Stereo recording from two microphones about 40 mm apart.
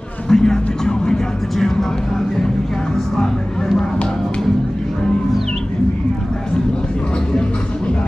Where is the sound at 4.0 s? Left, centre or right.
Left.